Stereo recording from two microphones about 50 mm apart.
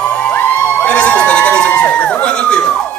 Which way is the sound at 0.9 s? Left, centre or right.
Left.